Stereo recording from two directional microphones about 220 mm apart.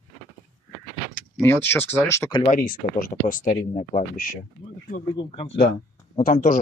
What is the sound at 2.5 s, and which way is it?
Speech, 40° left (ahead or behind).